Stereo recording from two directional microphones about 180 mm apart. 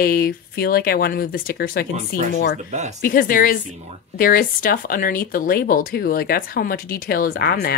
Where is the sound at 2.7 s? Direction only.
40° right (ahead or behind).